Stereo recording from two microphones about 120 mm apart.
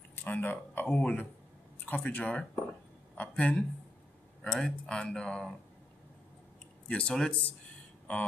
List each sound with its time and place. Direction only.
0.1 s speech: 15° left (ahead or behind)
6.9 s speech: 10° left (ahead or behind)